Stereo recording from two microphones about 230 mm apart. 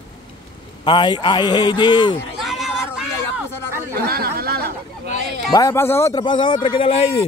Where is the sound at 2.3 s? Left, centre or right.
Centre.